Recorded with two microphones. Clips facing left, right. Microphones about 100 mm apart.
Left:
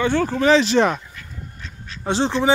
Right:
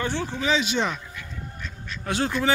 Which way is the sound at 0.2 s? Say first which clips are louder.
Left 10 dB; 45° left (ahead or behind).